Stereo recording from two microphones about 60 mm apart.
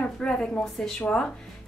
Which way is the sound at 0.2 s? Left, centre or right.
Centre.